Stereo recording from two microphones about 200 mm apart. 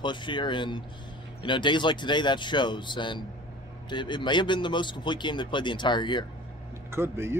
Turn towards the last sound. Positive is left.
turn(degrees=-10)  # may be behind; listen again after turning